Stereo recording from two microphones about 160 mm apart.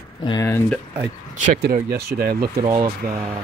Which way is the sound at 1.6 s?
75° right (ahead or behind).